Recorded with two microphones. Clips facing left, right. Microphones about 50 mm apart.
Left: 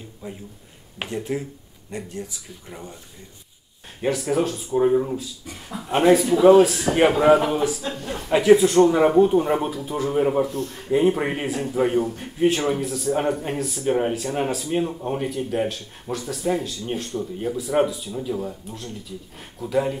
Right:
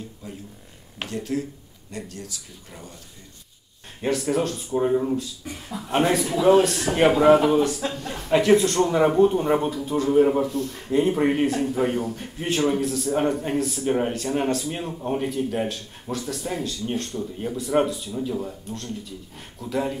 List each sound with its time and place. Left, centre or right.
0.9 s speech: left
4.0 s a man's voice: centre